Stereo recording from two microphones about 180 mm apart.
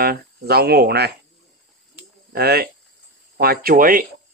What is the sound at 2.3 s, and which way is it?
Speech, 60° right (ahead or behind).